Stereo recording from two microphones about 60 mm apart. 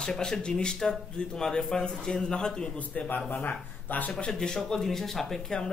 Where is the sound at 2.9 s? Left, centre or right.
Left.